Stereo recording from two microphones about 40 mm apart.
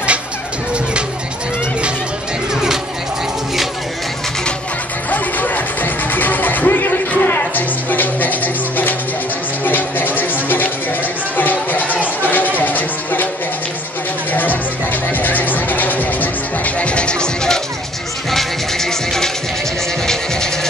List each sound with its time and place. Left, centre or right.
5.1 s music: left
12.2 s a sound: left
14.3 s music: left; by 17.6 s centre
18.3 s music: centre